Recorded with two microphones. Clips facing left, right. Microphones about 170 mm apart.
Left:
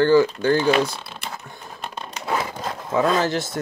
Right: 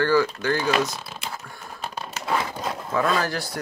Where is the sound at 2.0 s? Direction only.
5° right (ahead or behind).